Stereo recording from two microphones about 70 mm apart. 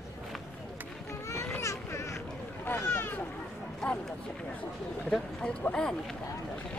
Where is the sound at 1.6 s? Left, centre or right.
Left.